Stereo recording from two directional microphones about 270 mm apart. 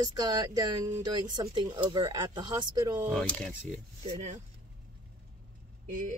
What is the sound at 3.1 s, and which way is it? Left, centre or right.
Speech, centre.